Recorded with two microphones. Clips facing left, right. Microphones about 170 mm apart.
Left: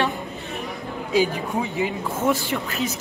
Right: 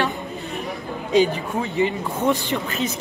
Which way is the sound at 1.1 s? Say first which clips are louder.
Right 3 dB; 5° left (ahead or behind).